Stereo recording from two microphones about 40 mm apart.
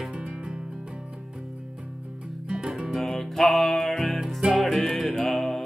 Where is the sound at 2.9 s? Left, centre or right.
Centre.